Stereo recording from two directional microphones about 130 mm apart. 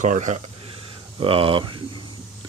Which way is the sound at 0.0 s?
70° right (ahead or behind).